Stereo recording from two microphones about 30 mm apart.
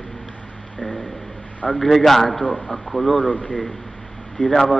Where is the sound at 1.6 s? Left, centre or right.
Left.